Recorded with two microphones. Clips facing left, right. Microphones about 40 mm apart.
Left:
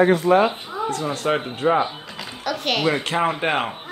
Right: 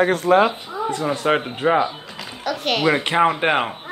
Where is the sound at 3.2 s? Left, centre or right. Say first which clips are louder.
Right 3 dB; centre.